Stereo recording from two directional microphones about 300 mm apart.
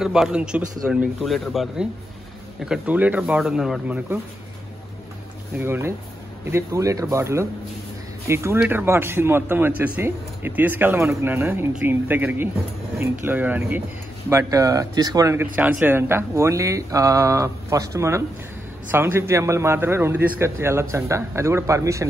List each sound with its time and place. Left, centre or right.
0.0 s a man's voice: centre
5.6 s speech: centre